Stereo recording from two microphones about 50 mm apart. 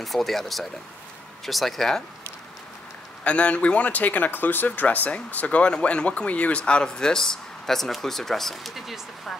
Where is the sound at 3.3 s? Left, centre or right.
Left; by 9.0 s centre.